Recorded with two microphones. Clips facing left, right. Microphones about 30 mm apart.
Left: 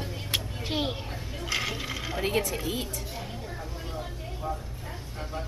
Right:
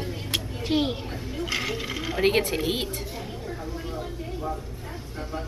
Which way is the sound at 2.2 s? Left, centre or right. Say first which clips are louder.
Right 6 dB; right.